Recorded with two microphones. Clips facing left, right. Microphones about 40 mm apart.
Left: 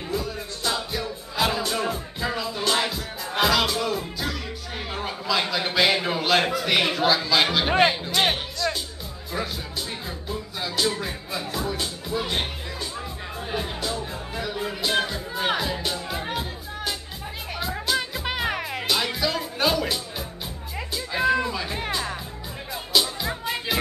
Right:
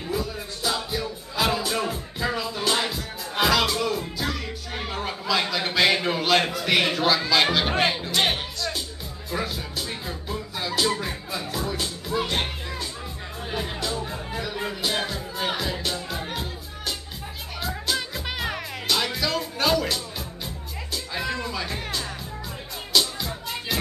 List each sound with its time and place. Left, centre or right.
0.1 s music: centre
13.5 s music: centre
17.6 s music: centre